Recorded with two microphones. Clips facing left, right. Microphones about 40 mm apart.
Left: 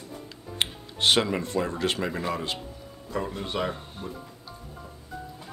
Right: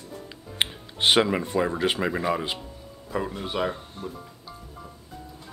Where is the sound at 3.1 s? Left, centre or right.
Centre.